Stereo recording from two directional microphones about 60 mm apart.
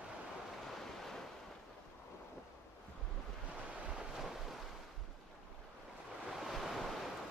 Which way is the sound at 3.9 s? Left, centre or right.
Centre.